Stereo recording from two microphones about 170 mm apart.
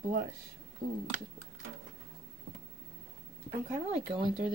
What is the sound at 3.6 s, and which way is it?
Speech, 45° right (ahead or behind).